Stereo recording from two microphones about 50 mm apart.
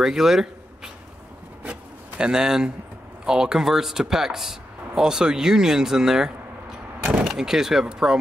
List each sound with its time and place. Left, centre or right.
0.0 s speech: centre
1.6 s rub: right
3.3 s speech: centre